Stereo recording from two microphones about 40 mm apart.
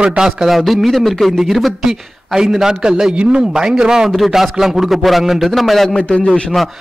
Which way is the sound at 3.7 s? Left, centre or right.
Centre.